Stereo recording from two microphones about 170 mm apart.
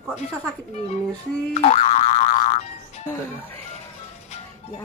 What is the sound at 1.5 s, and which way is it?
Boing, 35° left (ahead or behind).